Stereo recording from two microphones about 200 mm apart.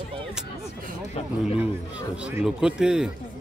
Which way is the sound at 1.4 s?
5° right (ahead or behind).